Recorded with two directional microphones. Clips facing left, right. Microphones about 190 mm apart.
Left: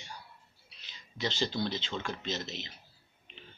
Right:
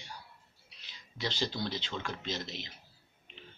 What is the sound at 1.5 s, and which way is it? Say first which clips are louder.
Speech: left 3 dB; 25° left (ahead or behind).